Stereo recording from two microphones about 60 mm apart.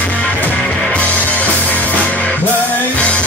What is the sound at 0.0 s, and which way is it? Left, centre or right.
Music, left.